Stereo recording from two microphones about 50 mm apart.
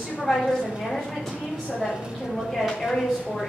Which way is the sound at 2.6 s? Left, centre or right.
Centre.